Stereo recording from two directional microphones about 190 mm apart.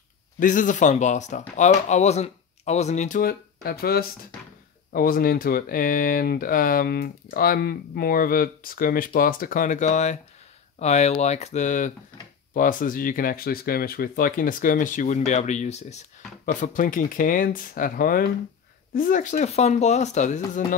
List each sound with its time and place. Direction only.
0.4 s speech: 45° left (ahead or behind)